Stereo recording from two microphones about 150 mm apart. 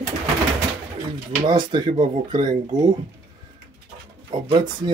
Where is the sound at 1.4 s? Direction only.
30° right (ahead or behind).